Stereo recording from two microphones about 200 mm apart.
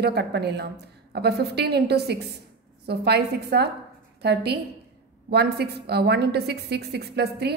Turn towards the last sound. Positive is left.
turn(degrees=-55)  # may be behind; listen again after turning